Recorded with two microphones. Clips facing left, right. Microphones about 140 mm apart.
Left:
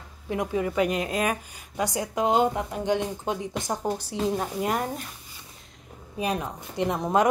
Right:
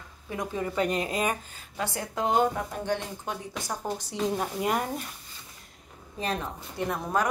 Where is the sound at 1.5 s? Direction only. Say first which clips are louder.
Left 4 dB; 15° left (ahead or behind).